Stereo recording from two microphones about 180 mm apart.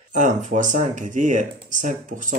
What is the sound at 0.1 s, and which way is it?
Speech, 45° right (ahead or behind).